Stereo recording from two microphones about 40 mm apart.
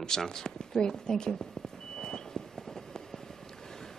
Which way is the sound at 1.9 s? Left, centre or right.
Centre.